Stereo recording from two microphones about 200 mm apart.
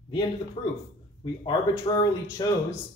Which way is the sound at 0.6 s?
25° left (ahead or behind).